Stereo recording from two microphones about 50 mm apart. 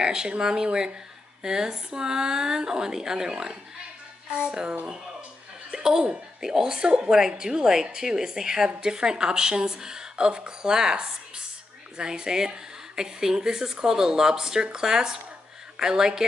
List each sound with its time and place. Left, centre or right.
0.0 s speech: centre